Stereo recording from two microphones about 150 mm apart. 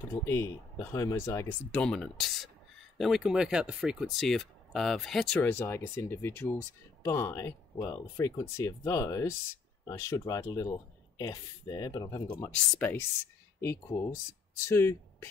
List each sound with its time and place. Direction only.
0.1 s speech: 20° left (ahead or behind)
1.7 s speech: 5° left (ahead or behind); by 12.4 s 25° left (ahead or behind)
13.6 s speech: 20° left (ahead or behind)